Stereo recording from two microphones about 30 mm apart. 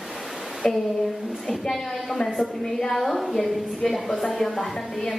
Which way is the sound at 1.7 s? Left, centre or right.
Centre.